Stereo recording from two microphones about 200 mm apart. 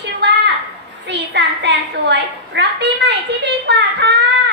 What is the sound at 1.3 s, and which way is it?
A child's voice, 60° right (ahead or behind).